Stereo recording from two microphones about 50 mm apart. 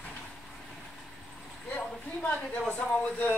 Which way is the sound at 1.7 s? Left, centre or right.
Left.